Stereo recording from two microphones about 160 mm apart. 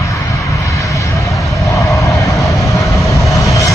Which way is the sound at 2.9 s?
20° left (ahead or behind).